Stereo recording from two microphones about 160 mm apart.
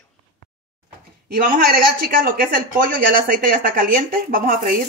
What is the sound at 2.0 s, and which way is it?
A woman's voice, 65° right (ahead or behind).